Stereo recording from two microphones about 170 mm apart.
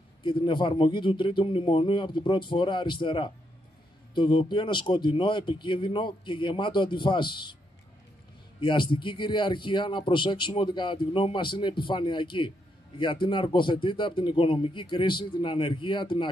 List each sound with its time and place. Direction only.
0.2 s speech: 30° left (ahead or behind)
8.5 s speech: 30° left (ahead or behind)